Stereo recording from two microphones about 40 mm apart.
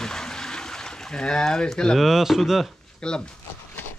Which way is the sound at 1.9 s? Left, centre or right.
Centre.